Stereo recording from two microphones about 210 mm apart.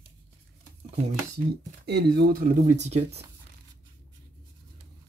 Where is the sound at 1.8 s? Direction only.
50° right (ahead or behind).